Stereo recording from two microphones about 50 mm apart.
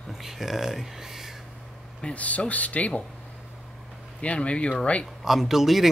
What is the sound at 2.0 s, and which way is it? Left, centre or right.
Speech, left.